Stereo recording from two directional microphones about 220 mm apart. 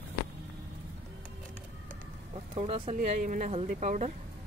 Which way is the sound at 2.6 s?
25° right (ahead or behind).